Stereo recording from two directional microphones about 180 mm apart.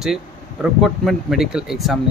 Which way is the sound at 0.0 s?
Centre (ahead or behind).